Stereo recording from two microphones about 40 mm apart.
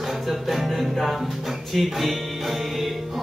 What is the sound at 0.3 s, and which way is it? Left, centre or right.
Music, centre.